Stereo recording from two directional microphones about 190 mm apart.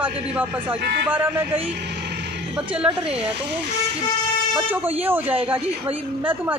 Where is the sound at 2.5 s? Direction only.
5° right (ahead or behind).